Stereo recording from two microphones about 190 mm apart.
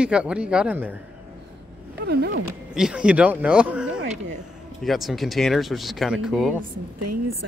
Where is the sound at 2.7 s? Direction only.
5° right (ahead or behind).